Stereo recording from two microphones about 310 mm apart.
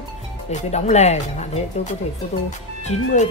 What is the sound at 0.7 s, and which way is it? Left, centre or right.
Speech, left.